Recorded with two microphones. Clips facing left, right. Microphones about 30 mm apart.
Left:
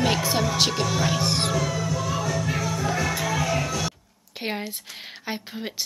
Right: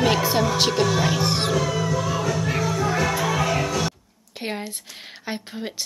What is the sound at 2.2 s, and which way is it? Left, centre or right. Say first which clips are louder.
Music: right 2 dB; right.